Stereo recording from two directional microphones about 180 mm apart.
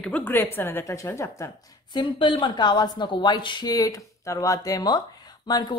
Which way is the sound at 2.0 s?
30° left (ahead or behind).